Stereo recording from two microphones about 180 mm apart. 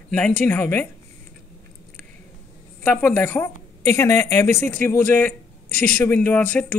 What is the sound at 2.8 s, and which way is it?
Speech, 10° left (ahead or behind).